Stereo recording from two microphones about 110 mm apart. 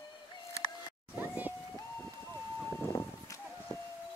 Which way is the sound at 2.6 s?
20° left (ahead or behind).